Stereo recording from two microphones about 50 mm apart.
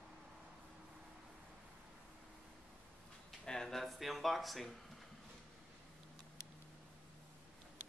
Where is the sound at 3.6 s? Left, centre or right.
Centre.